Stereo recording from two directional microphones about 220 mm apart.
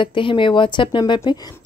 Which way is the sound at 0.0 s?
20° left (ahead or behind).